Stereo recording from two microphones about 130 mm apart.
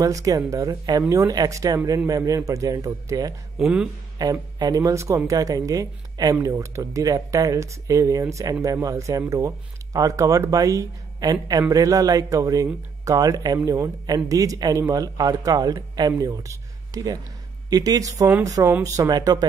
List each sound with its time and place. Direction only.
0.0 s speech: 25° right (ahead or behind)
3.5 s speech: 5° right (ahead or behind)
4.2 s speech: 30° right (ahead or behind)